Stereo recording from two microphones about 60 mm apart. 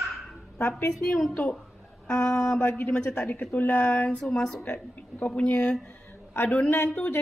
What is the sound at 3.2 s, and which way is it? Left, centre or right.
Speech, left.